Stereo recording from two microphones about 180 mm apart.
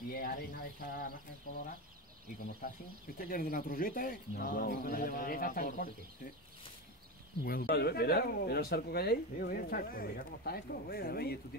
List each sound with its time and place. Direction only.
0.1 s speech: 55° left (ahead or behind)
7.4 s speech: 55° left (ahead or behind)